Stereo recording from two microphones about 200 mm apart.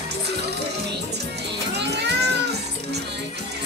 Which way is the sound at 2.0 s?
55° right (ahead or behind).